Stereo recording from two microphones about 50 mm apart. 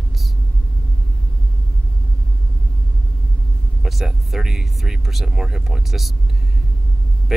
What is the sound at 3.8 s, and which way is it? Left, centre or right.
Speech, centre.